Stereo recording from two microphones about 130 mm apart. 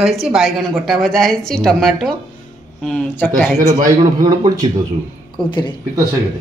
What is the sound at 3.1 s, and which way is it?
Speech, 15° left (ahead or behind).